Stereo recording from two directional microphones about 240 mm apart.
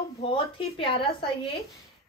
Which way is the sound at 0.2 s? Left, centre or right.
Left.